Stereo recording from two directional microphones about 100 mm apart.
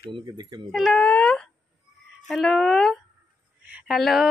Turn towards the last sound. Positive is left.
turn(degrees=-5)  # may be behind; listen again after turning